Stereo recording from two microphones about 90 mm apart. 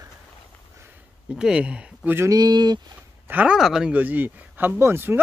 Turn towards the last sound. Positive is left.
turn(degrees=-25)  # may be behind; listen again after turning